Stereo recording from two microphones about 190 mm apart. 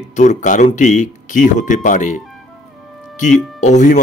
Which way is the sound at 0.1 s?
40° left (ahead or behind).